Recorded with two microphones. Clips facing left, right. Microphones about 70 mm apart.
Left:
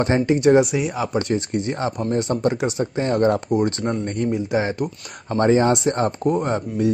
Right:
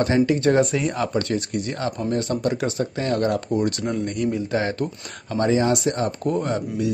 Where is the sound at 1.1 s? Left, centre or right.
Left.